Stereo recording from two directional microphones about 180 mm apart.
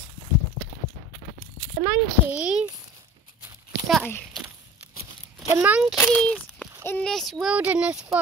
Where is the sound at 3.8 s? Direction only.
Centre (ahead or behind).